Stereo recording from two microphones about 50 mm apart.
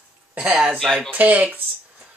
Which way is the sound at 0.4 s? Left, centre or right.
Right.